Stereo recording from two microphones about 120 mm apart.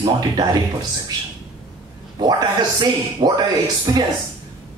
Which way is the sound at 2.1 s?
35° right (ahead or behind).